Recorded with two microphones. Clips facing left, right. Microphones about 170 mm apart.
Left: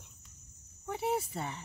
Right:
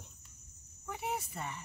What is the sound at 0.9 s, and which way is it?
Speech, 30° left (ahead or behind).